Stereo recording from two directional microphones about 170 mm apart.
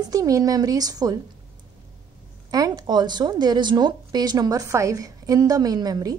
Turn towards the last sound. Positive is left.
turn(degrees=-20)  # may be behind; listen again after turning